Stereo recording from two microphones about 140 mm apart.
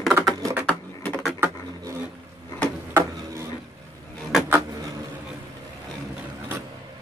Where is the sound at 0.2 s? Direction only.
25° right (ahead or behind).